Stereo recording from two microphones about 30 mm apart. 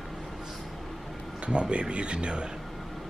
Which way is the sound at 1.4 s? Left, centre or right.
Right.